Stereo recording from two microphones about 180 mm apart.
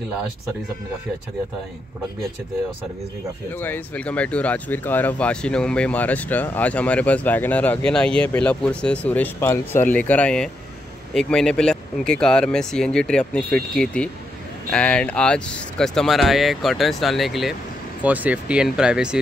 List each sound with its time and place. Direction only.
3.5 s speech: 10° left (ahead or behind)